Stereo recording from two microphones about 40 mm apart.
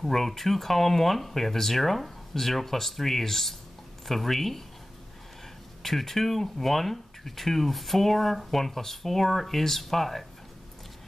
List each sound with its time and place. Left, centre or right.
0.0 s speech: centre
5.8 s speech: centre